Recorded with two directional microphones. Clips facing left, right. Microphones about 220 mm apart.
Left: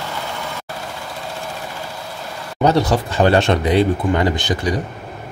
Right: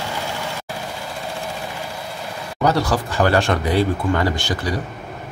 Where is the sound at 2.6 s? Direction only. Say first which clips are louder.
Left 3 dB; 20° left (ahead or behind).